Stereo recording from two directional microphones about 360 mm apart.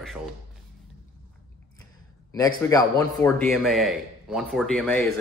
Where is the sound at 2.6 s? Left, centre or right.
Centre.